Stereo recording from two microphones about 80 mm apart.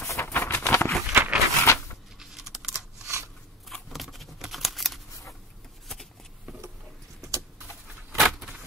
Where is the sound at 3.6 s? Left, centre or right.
Centre.